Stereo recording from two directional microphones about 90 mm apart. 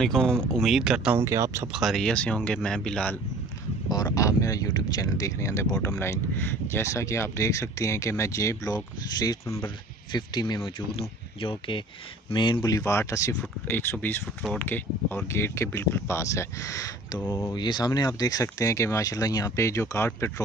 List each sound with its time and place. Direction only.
0.0 s speech: 5° left (ahead or behind)
1.1 s speech: 35° right (ahead or behind)
1.7 s speech: centre (ahead or behind)
3.9 s speech: 40° left (ahead or behind)
10.6 s speech: 80° left
12.6 s speech: 35° left (ahead or behind)
13.3 s speech: 20° left (ahead or behind); by 17.2 s 40° left (ahead or behind)
17.2 s speech: 25° left (ahead or behind)
17.6 s speech: 55° left (ahead or behind); by 20.1 s 30° left (ahead or behind)